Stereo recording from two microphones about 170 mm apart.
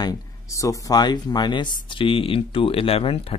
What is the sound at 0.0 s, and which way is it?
Speech, 20° left (ahead or behind).